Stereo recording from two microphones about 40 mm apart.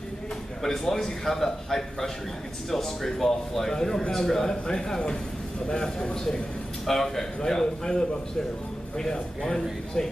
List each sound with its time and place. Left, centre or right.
0.6 s a man's voice: centre